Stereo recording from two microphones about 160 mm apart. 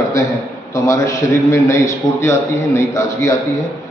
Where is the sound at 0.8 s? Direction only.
20° left (ahead or behind).